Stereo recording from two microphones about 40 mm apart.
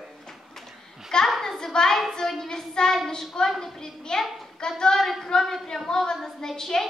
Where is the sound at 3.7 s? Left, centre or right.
Centre.